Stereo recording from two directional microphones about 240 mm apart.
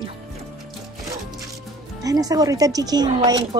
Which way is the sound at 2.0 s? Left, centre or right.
Centre.